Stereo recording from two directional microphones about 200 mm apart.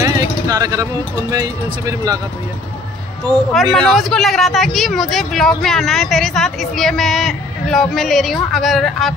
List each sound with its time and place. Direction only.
0.0 s vehicle: 15° right (ahead or behind)
1.3 s speech: 20° right (ahead or behind)
3.3 s speech: 5° left (ahead or behind)